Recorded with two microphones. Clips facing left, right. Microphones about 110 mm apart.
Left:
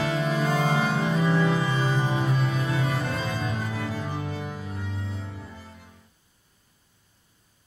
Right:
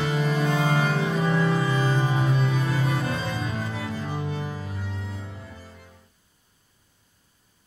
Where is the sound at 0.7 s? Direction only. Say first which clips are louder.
Even; centre (ahead or behind).